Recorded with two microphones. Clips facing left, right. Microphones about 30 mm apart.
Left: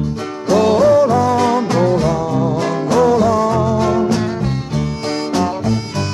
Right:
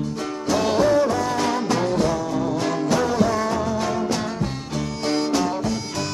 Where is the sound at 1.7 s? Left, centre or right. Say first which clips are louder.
Left 6 dB; left.